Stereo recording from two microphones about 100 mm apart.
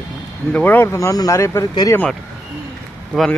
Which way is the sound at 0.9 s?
35° left (ahead or behind).